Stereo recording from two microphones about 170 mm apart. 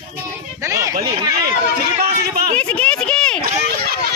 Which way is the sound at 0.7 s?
20° right (ahead or behind).